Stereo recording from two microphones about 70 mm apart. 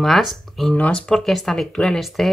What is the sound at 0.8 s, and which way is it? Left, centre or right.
Speech, centre.